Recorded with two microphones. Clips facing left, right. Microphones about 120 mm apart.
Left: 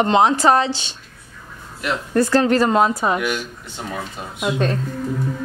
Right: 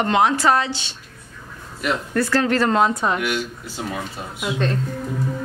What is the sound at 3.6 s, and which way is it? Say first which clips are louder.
Speech: right 1 dB; 5° right (ahead or behind).